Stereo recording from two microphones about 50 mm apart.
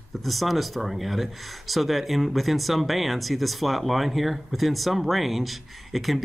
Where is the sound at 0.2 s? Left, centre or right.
Centre.